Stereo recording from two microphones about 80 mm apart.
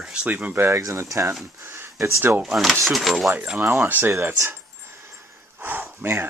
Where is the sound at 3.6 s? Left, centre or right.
Right.